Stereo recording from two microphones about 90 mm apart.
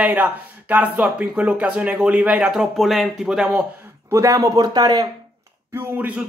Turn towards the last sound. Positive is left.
turn(degrees=-20)  # may be behind; listen again after turning